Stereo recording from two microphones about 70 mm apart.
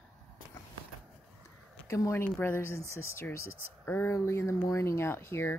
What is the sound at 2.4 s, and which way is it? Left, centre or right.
Speech, left.